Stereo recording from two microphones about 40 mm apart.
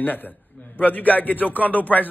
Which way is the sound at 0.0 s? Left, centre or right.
Left.